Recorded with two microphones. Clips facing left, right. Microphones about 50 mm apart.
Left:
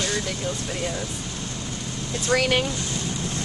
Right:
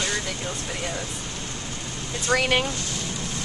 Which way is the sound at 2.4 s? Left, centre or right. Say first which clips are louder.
Even; centre.